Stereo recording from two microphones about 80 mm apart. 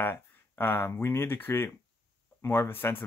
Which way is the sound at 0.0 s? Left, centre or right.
Left.